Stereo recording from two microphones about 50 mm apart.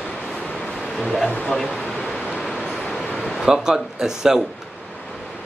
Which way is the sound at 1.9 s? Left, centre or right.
Centre.